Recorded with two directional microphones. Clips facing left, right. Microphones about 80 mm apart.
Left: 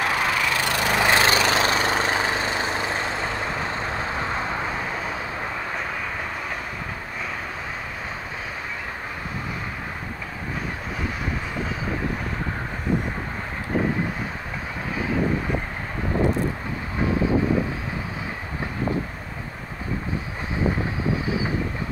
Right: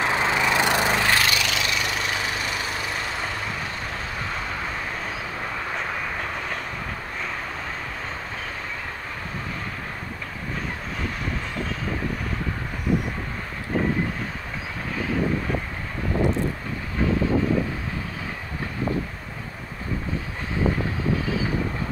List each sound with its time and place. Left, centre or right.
0.0 s vehicle: right
0.9 s vehicle: centre
1.2 s vehicle: left